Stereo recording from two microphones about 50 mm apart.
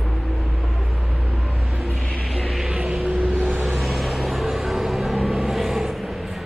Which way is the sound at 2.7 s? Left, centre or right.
Right.